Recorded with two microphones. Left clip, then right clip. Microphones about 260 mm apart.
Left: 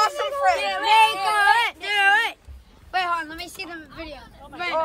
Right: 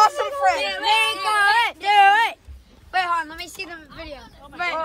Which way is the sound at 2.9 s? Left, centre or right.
Right.